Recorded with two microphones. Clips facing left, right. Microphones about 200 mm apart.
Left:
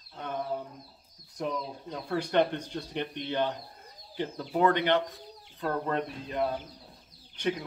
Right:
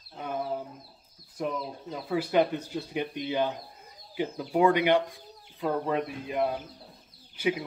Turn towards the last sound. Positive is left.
turn(degrees=-5)  # may be behind; listen again after turning